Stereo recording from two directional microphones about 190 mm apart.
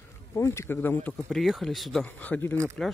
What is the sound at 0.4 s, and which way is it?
Speech, 15° left (ahead or behind).